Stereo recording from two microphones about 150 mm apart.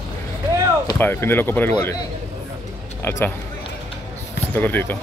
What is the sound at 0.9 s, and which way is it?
Speech, 15° left (ahead or behind).